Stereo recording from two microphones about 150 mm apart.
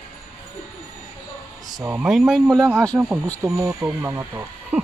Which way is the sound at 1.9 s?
5° right (ahead or behind).